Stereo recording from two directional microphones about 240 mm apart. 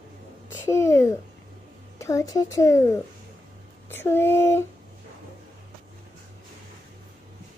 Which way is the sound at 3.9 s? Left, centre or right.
Centre.